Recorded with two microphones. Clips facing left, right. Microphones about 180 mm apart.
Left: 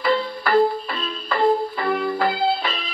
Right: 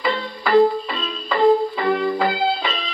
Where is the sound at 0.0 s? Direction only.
Centre (ahead or behind).